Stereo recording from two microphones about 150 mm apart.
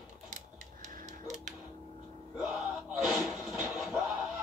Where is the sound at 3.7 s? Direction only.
Centre (ahead or behind).